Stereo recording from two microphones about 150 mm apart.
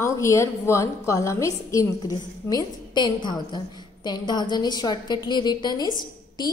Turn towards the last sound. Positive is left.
turn(degrees=30)  # may be behind; listen again after turning